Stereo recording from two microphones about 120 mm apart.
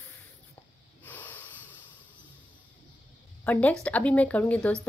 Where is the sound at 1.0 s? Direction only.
15° left (ahead or behind).